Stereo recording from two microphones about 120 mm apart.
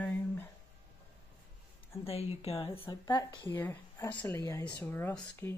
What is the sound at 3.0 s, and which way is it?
Speech, 35° left (ahead or behind).